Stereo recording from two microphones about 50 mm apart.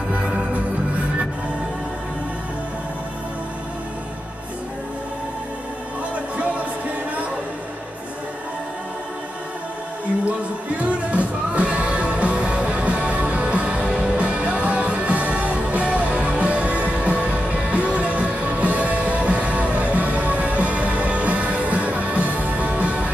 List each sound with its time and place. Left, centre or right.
6.1 s music: right
10.8 s music: right